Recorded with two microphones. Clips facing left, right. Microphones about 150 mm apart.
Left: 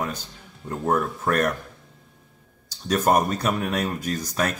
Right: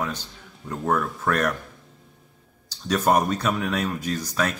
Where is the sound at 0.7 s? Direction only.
30° left (ahead or behind).